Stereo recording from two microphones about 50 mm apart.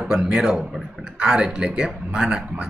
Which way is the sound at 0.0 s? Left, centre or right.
Centre.